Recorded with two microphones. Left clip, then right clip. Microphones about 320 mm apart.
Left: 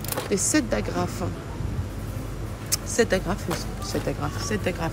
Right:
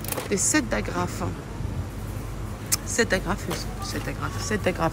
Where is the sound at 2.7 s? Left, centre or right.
Centre.